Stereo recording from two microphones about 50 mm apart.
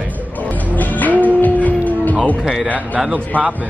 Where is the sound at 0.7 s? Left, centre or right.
Left.